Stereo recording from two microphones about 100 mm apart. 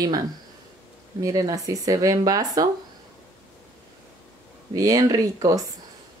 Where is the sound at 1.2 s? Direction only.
35° right (ahead or behind).